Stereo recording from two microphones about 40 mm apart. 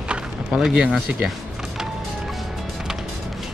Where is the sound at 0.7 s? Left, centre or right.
Right.